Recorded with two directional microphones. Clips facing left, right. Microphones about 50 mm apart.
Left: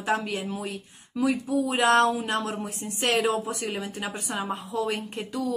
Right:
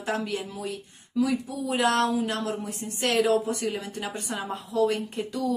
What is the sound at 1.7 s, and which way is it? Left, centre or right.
Speech, centre.